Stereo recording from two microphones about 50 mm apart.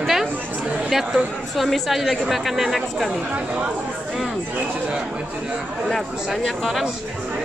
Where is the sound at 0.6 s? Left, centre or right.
Right.